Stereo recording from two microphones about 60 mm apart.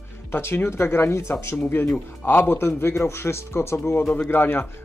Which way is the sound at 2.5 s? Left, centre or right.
Left.